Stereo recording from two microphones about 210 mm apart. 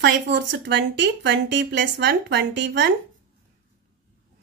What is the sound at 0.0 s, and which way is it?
Speech, 55° right (ahead or behind).